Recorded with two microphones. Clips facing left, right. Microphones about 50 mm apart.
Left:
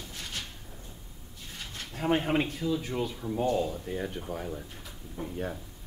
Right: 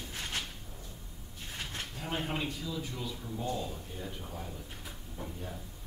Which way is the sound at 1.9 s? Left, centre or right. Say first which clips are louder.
Left 11 dB; left.